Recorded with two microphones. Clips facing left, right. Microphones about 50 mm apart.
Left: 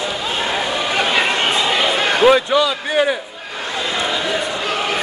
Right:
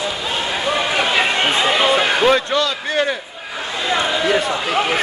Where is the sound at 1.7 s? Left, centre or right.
Centre.